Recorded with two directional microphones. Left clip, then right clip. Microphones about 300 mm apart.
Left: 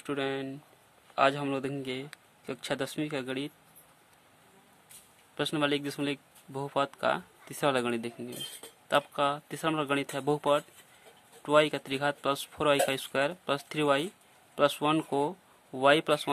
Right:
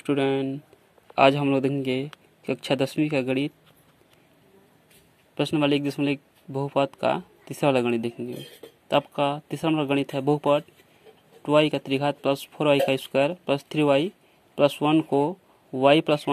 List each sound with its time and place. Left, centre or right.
0.0 s speech: centre
5.3 s speech: centre